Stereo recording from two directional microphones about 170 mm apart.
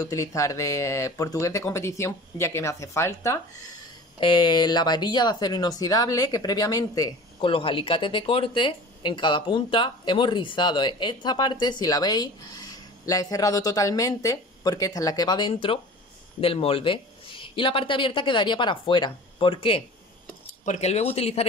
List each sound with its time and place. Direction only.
0.0 s speech: 20° left (ahead or behind)
4.2 s speech: 30° left (ahead or behind)
7.3 s speech: 30° left (ahead or behind)
20.6 s speech: 40° left (ahead or behind)